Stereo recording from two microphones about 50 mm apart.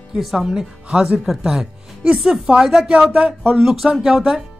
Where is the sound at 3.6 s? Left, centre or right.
Centre.